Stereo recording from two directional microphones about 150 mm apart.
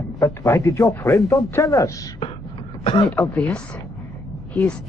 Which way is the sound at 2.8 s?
40° left (ahead or behind).